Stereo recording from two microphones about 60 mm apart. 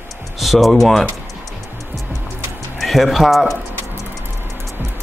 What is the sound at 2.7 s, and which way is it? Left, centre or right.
Speech, centre.